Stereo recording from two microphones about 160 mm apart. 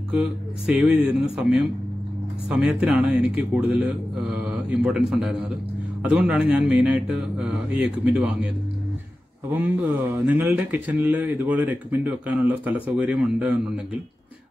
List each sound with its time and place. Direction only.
0.1 s speech: 5° right (ahead or behind)
9.5 s speech: 10° right (ahead or behind)